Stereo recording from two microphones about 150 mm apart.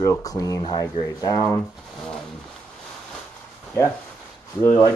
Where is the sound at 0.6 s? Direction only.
35° left (ahead or behind).